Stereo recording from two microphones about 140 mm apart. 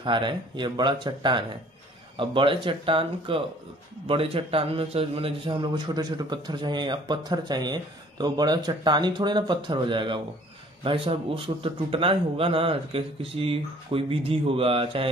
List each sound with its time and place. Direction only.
0.0 s a man's voice: 35° right (ahead or behind)